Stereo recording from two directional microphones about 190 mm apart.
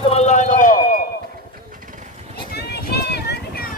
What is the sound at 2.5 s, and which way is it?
Vehicle, 55° left (ahead or behind).